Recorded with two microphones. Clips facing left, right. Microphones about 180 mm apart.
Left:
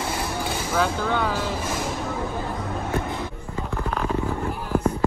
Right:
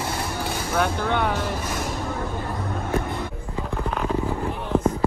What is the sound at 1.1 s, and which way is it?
Speech, 15° right (ahead or behind).